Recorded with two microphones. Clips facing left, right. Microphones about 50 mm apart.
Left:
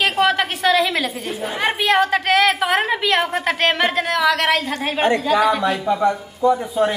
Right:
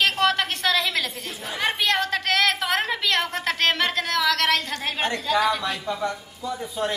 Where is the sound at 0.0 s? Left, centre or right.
Centre.